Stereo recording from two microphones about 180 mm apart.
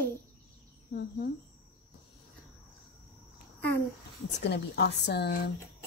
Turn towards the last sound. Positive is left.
turn(degrees=65)  # may be behind; listen again after turning